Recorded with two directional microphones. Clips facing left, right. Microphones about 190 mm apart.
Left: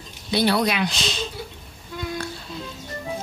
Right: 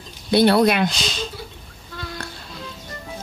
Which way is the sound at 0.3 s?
55° right (ahead or behind).